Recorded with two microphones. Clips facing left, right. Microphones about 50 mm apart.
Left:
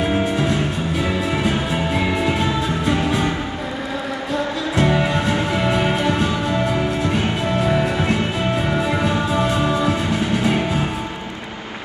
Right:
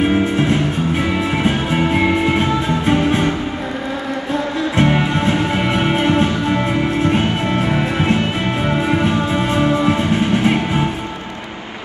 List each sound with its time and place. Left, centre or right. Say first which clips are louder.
0.0 s music: right 4 dB; right
4.7 s music: right 2 dB; right